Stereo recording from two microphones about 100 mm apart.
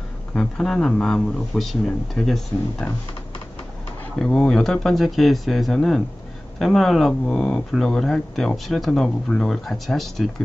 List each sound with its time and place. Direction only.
0.4 s speech: 5° left (ahead or behind)
2.8 s speech: 15° left (ahead or behind)
4.2 s speech: 10° left (ahead or behind)